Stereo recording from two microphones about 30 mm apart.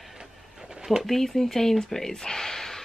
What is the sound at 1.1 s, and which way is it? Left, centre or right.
Speech, centre.